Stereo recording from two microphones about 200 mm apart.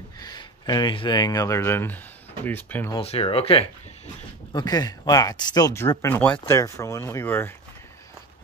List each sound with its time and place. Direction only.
0.2 s speech: 20° left (ahead or behind)
2.9 s speech: 30° left (ahead or behind); by 7.5 s 10° left (ahead or behind)